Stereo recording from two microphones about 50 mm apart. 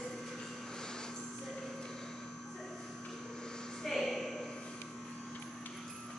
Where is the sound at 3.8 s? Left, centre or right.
Centre.